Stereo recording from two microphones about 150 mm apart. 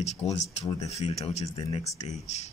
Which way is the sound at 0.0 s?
45° left (ahead or behind).